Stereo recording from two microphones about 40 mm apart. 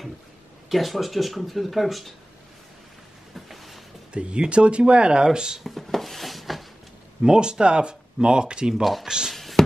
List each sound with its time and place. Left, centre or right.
0.7 s speech: centre
3.3 s a sound: centre
4.1 s speech: right
5.6 s rub: centre
7.2 s speech: centre
9.3 s a sound: centre